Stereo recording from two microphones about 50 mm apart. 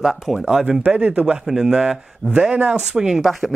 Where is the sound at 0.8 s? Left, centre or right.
Right.